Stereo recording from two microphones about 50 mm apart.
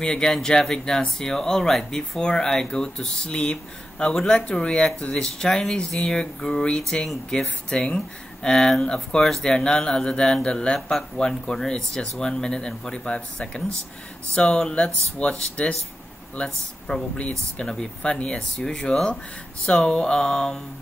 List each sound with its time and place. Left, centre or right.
0.0 s speech: centre